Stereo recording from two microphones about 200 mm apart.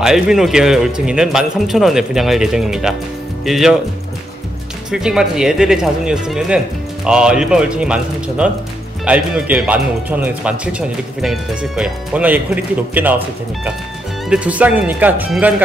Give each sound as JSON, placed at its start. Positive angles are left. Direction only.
{"t": 0.0, "sound": "speech", "side_deg": 0}
{"t": 4.9, "sound": "speech", "side_deg": -5}
{"t": 14.3, "sound": "speech", "side_deg": -5}